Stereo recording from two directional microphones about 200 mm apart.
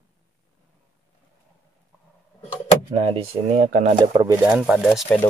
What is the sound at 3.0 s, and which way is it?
Speech, 30° right (ahead or behind).